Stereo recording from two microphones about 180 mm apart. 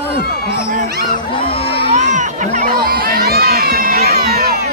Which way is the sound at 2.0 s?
45° right (ahead or behind).